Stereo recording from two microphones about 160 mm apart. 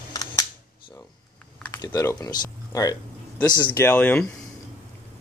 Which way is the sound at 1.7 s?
20° left (ahead or behind).